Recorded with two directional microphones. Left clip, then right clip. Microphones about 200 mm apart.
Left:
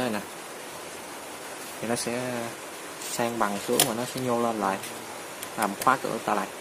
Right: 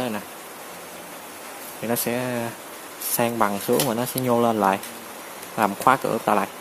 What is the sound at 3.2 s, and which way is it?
Speech, 15° right (ahead or behind).